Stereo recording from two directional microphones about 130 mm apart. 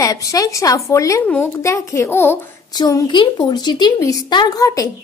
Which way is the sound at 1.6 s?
20° left (ahead or behind).